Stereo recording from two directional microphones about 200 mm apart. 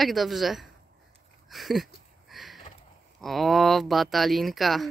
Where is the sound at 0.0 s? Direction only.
Centre (ahead or behind).